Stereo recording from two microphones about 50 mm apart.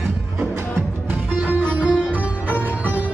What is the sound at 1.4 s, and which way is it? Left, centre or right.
Sitar, right.